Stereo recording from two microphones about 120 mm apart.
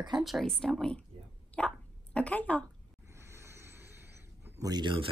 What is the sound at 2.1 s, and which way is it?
Speech, 10° left (ahead or behind).